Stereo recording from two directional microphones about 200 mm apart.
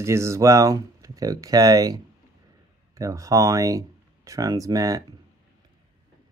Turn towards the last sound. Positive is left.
turn(degrees=-15)  # may be behind; listen again after turning